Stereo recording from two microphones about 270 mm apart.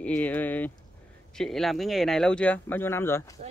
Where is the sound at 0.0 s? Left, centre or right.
Centre.